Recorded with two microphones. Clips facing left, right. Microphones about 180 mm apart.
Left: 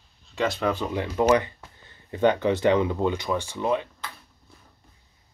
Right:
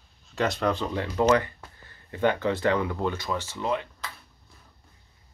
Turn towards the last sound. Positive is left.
turn(degrees=15)  # may be behind; listen again after turning